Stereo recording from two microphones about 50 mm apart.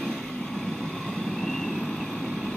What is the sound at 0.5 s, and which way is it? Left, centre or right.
Vehicle, centre.